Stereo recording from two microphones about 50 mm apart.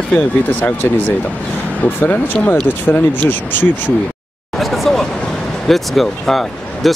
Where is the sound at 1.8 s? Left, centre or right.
Left.